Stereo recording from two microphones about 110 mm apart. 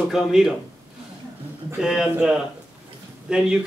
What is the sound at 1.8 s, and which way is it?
Speech, 5° right (ahead or behind).